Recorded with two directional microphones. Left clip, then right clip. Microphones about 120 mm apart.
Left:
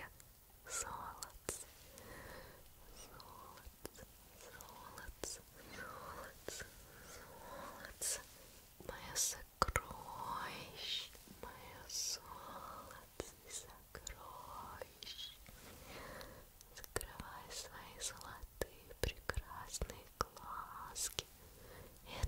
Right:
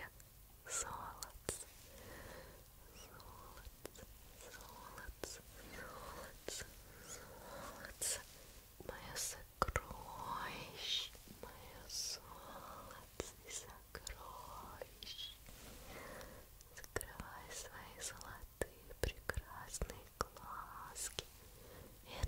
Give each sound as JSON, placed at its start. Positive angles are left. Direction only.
{"t": 0.7, "sound": "whispering", "side_deg": 0}
{"t": 2.0, "sound": "sniff", "side_deg": 5}
{"t": 3.0, "sound": "whispering", "side_deg": 5}
{"t": 3.8, "sound": "biting", "side_deg": 55}
{"t": 4.5, "sound": "whispering", "side_deg": 0}
{"t": 8.8, "sound": "whispering", "side_deg": 10}
{"t": 11.4, "sound": "whispering", "side_deg": 10}
{"t": 14.4, "sound": "whispering", "side_deg": 10}
{"t": 21.7, "sound": "wheeze", "side_deg": 5}